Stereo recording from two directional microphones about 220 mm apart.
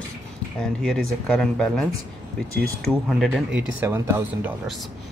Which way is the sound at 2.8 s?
Centre (ahead or behind).